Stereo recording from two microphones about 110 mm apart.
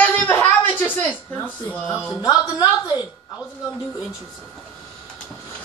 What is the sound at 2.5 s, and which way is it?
Speech, 35° left (ahead or behind).